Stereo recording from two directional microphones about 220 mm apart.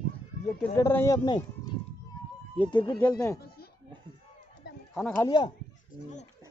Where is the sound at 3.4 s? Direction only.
45° left (ahead or behind).